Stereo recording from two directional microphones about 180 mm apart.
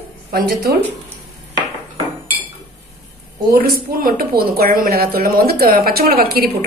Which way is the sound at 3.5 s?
55° right (ahead or behind).